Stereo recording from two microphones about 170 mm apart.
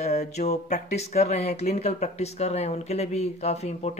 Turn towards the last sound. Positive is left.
turn(degrees=40)  # may be behind; listen again after turning